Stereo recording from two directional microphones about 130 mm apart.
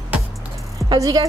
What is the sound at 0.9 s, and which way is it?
Speech, 30° right (ahead or behind).